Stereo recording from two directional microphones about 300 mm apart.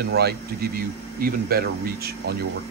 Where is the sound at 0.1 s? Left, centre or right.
Right.